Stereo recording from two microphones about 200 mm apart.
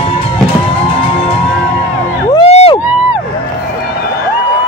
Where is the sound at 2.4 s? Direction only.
30° left (ahead or behind).